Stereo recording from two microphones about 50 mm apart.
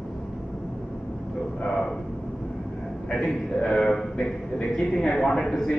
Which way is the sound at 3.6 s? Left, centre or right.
Centre.